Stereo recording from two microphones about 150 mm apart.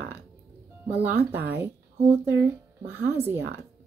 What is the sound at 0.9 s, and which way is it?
Speech, 10° right (ahead or behind).